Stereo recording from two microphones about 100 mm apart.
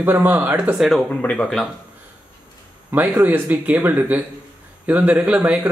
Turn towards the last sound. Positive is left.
turn(degrees=-10)  # may be behind; listen again after turning